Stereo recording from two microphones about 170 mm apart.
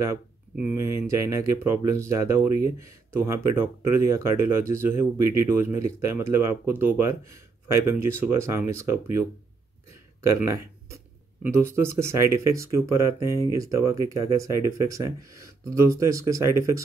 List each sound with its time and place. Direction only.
0.6 s speech: 15° right (ahead or behind)
10.4 s speech: 15° right (ahead or behind)